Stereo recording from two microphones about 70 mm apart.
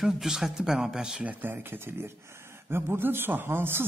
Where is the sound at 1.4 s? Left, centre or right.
Right.